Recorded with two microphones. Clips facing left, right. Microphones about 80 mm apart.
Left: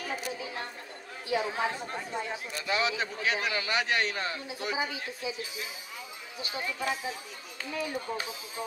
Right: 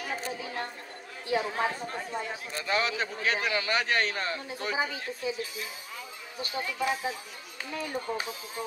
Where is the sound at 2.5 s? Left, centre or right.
Right.